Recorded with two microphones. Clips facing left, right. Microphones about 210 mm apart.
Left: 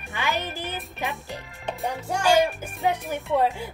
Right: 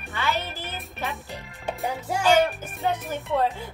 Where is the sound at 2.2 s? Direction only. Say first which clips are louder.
Even; 10° left (ahead or behind).